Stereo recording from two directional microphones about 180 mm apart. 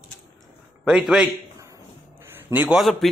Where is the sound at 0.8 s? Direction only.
5° right (ahead or behind).